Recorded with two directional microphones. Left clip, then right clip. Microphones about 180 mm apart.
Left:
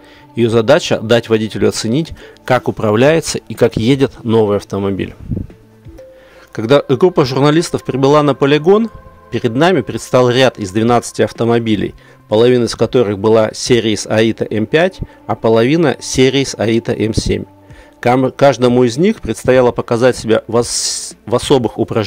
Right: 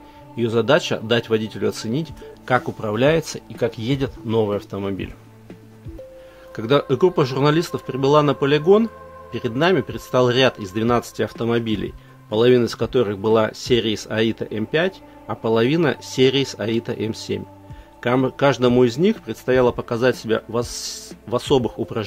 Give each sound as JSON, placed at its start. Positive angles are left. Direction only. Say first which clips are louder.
{"t": 0.4, "sound": "speech", "louder": "left 7 dB", "side_deg": 45}
{"t": 6.5, "sound": "speech", "louder": "left 7 dB", "side_deg": 45}